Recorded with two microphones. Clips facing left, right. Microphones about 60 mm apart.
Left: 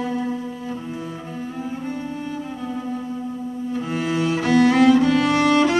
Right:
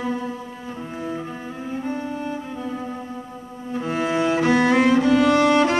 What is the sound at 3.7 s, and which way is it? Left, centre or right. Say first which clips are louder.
Cello: right 2 dB; right.